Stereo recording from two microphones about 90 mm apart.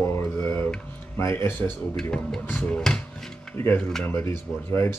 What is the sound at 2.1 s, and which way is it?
Speech, 5° left (ahead or behind).